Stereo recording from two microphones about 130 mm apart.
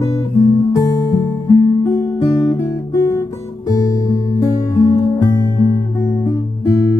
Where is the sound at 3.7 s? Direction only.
25° left (ahead or behind).